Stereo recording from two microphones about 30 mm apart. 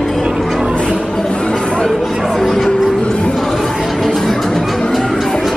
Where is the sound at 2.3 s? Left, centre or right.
Centre.